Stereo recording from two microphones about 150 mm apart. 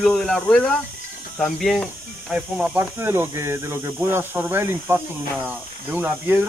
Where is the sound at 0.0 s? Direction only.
5° left (ahead or behind).